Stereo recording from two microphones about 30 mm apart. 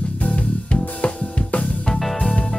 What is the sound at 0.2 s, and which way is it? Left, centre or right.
Music, left.